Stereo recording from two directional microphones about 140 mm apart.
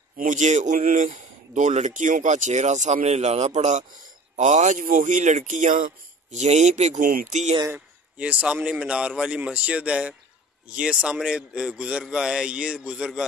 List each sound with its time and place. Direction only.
0.2 s a man's voice: 60° right (ahead or behind)
6.4 s a man's voice: 55° right (ahead or behind)
7.6 s a man's voice: 10° right (ahead or behind)